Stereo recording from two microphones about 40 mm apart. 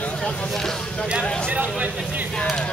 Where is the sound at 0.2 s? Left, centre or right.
Centre.